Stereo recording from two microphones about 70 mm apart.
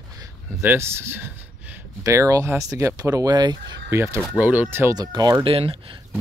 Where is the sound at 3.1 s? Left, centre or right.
Right.